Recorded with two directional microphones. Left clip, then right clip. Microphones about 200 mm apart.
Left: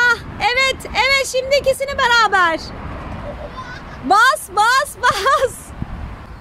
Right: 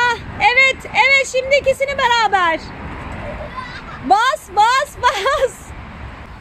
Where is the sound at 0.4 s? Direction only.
10° left (ahead or behind).